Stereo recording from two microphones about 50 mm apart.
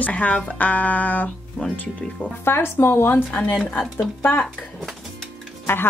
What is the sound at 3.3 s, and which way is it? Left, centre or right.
Speech, left.